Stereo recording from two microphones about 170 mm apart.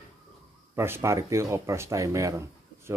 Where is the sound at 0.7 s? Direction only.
15° right (ahead or behind).